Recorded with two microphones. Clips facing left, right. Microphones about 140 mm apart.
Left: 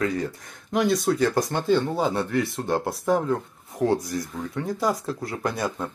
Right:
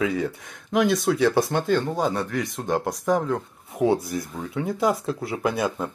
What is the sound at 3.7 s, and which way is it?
Speech, 5° right (ahead or behind).